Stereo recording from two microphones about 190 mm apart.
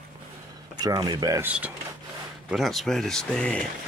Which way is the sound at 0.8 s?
20° right (ahead or behind).